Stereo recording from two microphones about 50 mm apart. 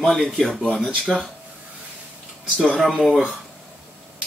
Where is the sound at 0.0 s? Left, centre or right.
Centre.